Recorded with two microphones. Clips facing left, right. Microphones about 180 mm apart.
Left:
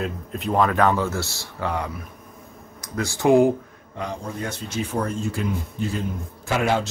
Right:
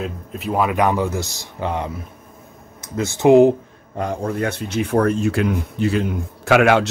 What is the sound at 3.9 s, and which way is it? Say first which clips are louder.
Speech: right 7 dB; 50° right (ahead or behind).